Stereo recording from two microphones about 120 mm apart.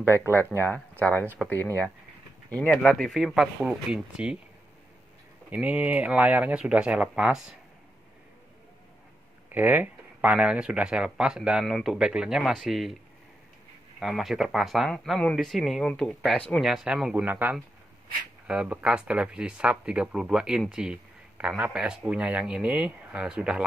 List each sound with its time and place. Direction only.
0.0 s speech: 20° right (ahead or behind)
0.5 s speech: 15° left (ahead or behind)
2.5 s speech: 5° left (ahead or behind)
5.5 s speech: 10° right (ahead or behind)
9.5 s speech: 15° right (ahead or behind)
13.9 s speech: centre (ahead or behind)
16.6 s speech: 5° right (ahead or behind)